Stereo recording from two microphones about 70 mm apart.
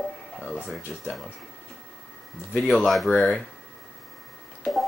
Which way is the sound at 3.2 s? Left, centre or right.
Centre.